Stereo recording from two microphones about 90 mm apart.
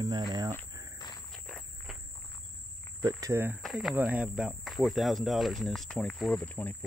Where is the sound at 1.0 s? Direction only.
50° left (ahead or behind).